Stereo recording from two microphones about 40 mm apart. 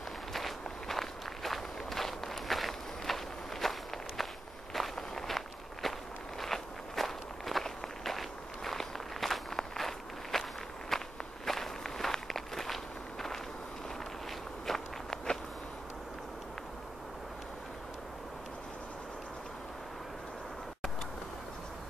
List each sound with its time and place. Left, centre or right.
0.3 s walk: centre
14.7 s walk: centre